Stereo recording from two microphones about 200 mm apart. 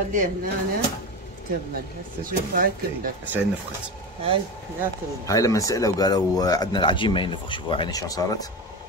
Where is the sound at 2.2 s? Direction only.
45° right (ahead or behind).